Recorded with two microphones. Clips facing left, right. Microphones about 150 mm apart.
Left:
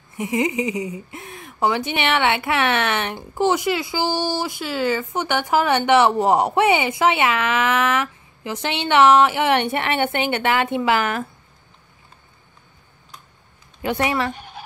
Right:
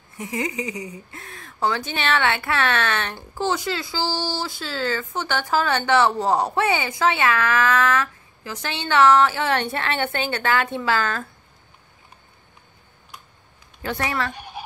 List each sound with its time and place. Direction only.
0.2 s speech: 20° left (ahead or behind)
13.8 s speech: 20° left (ahead or behind)